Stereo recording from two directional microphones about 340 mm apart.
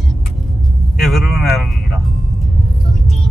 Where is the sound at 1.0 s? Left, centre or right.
Centre.